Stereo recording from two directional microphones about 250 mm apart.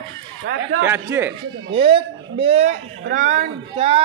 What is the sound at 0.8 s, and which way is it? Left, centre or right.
Speech, centre.